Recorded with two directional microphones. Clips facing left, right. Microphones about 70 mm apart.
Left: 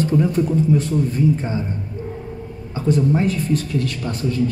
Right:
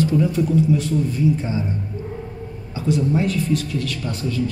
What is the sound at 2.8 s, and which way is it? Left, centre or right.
Speech, left.